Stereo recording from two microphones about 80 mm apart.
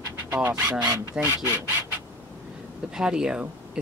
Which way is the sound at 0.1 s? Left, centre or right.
Right.